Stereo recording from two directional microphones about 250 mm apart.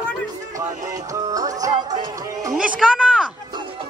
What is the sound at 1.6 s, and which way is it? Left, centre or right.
Music, centre.